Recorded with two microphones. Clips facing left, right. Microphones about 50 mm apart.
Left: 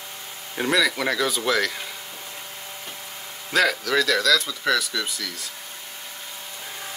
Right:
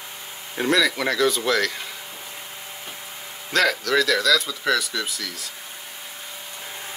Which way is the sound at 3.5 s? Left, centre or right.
Centre.